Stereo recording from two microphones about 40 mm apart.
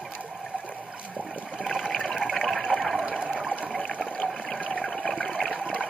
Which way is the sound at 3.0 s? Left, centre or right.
Right.